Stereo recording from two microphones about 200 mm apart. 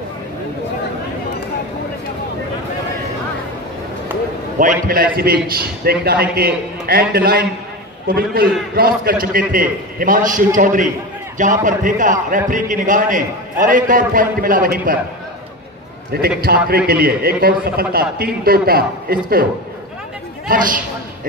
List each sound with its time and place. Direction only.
4.6 s a man's voice: 45° right (ahead or behind)
16.1 s a man's voice: 50° right (ahead or behind)